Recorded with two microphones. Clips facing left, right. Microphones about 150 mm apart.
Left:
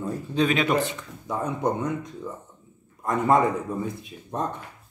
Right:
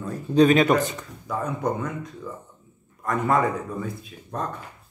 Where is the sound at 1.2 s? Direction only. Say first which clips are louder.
Left 1 dB; 25° left (ahead or behind).